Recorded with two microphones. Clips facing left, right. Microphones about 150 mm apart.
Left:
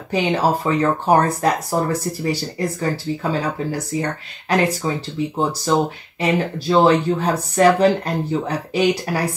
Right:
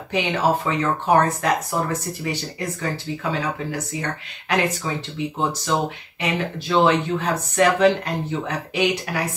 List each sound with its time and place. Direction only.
0.1 s speech: 35° left (ahead or behind)